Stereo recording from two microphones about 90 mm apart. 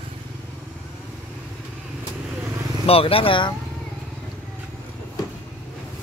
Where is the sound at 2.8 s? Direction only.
90° left; by 3.6 s 65° left (ahead or behind).